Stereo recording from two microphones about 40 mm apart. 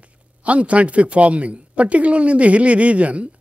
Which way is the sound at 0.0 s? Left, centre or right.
Right.